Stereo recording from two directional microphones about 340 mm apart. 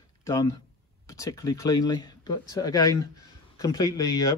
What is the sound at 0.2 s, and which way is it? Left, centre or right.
Speech, centre.